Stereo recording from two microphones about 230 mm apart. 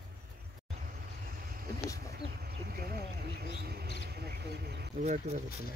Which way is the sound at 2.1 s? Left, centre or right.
Right.